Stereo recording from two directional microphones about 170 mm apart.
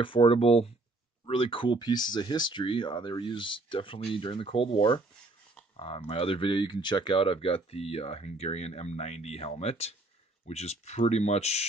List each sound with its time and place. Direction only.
0.0 s speech: 30° left (ahead or behind)